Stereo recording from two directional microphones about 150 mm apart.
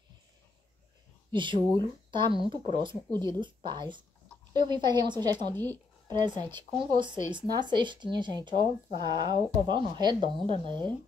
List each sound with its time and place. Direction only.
1.3 s speech: 30° right (ahead or behind)
5.5 s speech: 15° left (ahead or behind)
6.0 s speech: 30° right (ahead or behind)